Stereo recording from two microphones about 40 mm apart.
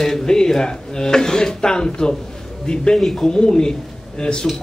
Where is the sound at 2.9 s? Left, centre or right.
Centre.